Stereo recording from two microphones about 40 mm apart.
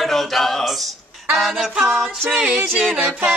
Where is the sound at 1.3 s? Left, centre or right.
Centre.